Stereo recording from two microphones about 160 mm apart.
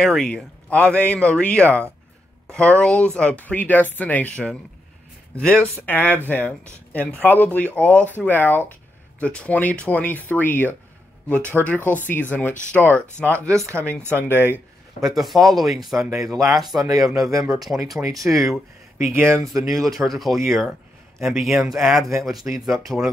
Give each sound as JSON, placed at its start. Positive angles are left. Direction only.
{"t": 0.0, "sound": "speech", "side_deg": 5}
{"t": 13.6, "sound": "speech", "side_deg": -15}
{"t": 14.1, "sound": "speech", "side_deg": 10}
{"t": 15.1, "sound": "speech", "side_deg": 0}
{"t": 16.8, "sound": "speech", "side_deg": -20}
{"t": 17.6, "sound": "speech", "side_deg": 0}
{"t": 18.0, "sound": "speech", "side_deg": -20}
{"t": 19.4, "sound": "speech", "side_deg": 0}